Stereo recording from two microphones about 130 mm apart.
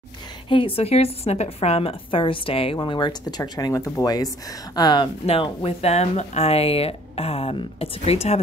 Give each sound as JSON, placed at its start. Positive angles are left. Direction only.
{"t": 0.5, "sound": "a woman's voice", "side_deg": 45}
{"t": 5.2, "sound": "speech", "side_deg": 50}